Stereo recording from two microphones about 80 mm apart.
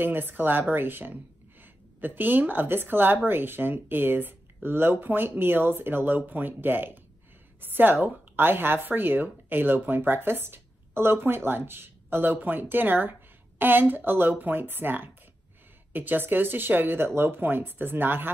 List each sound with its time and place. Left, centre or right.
0.0 s speech: right